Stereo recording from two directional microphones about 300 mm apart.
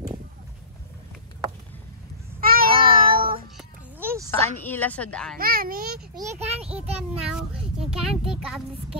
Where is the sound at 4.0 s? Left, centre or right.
Centre.